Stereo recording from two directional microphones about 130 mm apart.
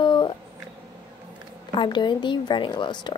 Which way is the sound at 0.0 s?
35° left (ahead or behind).